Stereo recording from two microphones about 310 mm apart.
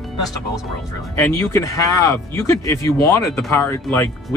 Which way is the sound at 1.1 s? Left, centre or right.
Centre.